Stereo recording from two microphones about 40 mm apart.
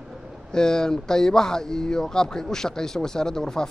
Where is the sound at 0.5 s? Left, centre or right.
Centre.